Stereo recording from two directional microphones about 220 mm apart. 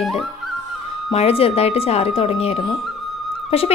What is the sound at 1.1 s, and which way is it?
Speech, 25° left (ahead or behind).